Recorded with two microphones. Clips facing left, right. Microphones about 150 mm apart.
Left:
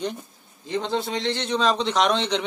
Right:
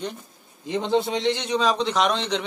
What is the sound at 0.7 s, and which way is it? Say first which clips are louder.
Speech: right 3 dB; 15° right (ahead or behind).